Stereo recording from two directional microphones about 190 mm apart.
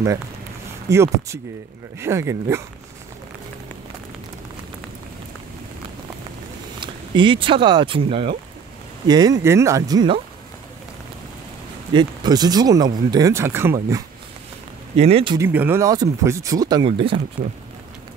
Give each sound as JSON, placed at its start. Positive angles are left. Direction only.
{"t": 0.8, "sound": "speech", "side_deg": -15}
{"t": 6.8, "sound": "speech", "side_deg": -25}
{"t": 11.9, "sound": "speech", "side_deg": -25}
{"t": 15.0, "sound": "speech", "side_deg": -30}
{"t": 15.3, "sound": "speech", "side_deg": -10}